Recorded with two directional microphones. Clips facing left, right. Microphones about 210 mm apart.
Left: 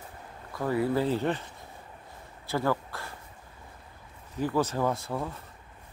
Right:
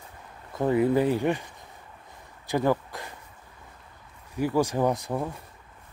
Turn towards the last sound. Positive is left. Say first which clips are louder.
# right 3 dB
turn(degrees=-15)  # may be behind; listen again after turning